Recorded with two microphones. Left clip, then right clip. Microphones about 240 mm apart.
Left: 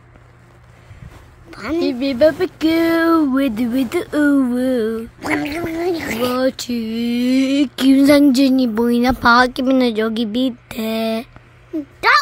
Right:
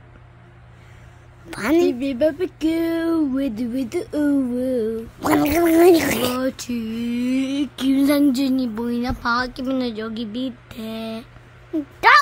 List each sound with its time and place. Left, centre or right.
1.5 s a woman's voice: right
1.9 s speech: centre; by 5.0 s left
5.4 s a woman's voice: right
5.7 s speech: right
6.0 s speech: right
6.3 s speech: centre
12.0 s a sound: centre